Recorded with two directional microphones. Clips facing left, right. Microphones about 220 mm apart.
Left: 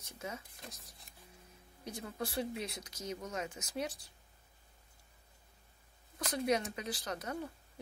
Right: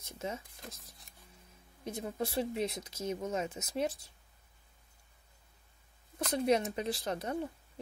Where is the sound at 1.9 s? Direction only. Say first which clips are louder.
Right 4 dB; 20° right (ahead or behind).